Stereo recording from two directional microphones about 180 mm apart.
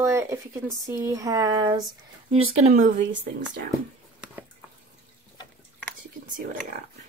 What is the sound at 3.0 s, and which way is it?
Speech, 90° right.